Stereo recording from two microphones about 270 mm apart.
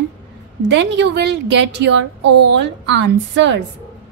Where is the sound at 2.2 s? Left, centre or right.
Right.